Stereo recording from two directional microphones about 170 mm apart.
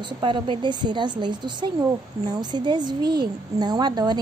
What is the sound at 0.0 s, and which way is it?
A woman's voice, 30° right (ahead or behind).